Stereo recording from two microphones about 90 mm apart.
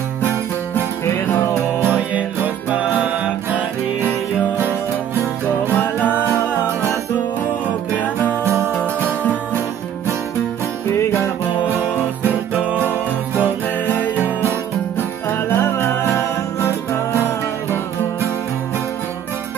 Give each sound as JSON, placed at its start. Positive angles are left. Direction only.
{"t": 1.8, "sound": "music", "side_deg": -20}
{"t": 11.0, "sound": "music", "side_deg": 30}
{"t": 12.2, "sound": "music", "side_deg": -20}
{"t": 15.2, "sound": "music", "side_deg": 30}